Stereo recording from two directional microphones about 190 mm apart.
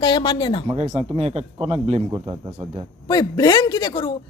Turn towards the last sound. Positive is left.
turn(degrees=20)  # may be behind; listen again after turning